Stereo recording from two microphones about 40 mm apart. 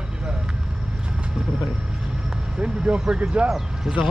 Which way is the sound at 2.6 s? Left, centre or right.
Right.